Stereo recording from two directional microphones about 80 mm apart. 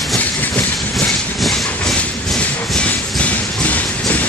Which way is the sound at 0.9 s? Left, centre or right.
Centre.